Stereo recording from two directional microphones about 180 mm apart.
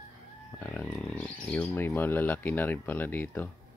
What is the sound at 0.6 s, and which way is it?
Speech, 10° left (ahead or behind).